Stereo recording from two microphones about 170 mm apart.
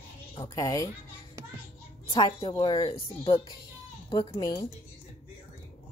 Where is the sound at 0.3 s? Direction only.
20° left (ahead or behind).